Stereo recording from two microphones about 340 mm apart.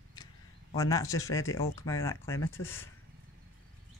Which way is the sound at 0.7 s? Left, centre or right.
Centre.